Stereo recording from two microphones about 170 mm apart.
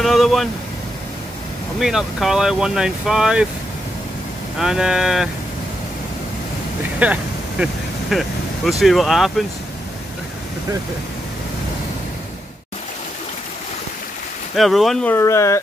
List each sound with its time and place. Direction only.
0.0 s speech: centre (ahead or behind)
1.8 s speech: centre (ahead or behind)
4.6 s speech: 5° right (ahead or behind)
7.0 s speech: 5° right (ahead or behind)
14.5 s speech: centre (ahead or behind)
15.1 s speech: 15° left (ahead or behind)